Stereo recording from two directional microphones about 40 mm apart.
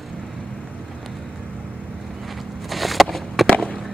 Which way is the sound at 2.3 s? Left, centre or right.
Centre.